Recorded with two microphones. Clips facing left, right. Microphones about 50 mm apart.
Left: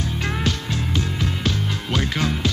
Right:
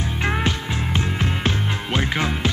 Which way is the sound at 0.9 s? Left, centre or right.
Right.